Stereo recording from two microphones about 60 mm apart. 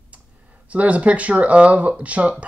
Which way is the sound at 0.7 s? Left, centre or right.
Right.